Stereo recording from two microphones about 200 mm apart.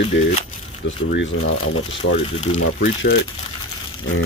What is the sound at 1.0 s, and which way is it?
Speech, 80° left.